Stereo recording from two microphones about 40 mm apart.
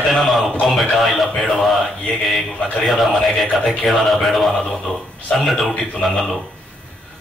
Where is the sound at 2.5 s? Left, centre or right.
Left.